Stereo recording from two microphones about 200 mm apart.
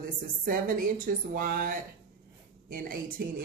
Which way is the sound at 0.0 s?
45° right (ahead or behind).